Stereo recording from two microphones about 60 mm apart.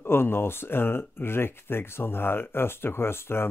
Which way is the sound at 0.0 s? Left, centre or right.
Left.